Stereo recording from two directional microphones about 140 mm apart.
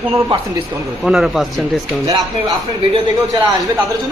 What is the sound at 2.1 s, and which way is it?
Speech, 25° right (ahead or behind).